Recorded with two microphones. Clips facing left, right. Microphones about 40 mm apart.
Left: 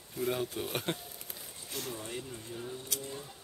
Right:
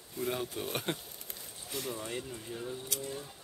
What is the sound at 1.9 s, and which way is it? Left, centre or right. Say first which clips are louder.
Speech: right 2 dB; centre.